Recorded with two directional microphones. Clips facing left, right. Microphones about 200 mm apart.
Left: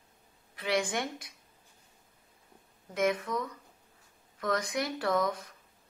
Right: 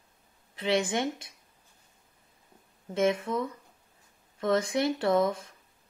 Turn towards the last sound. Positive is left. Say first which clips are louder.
# right 4 dB
turn(degrees=-25)  # may be behind; listen again after turning